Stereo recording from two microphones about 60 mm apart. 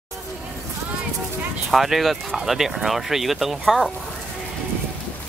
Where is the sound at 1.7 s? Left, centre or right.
Centre.